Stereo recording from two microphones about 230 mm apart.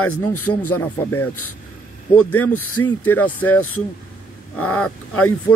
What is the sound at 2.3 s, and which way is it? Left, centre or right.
Speech, left.